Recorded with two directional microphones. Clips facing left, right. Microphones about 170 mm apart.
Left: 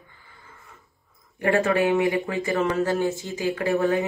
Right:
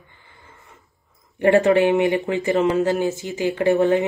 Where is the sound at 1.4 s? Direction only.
25° right (ahead or behind).